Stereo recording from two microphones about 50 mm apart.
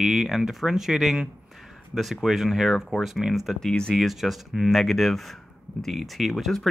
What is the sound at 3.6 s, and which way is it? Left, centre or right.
Speech, centre.